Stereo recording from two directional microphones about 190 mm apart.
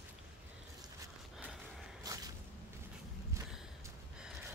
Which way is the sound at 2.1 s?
20° right (ahead or behind).